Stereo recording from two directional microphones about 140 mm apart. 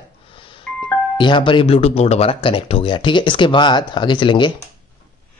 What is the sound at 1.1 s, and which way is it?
Speech, 35° left (ahead or behind).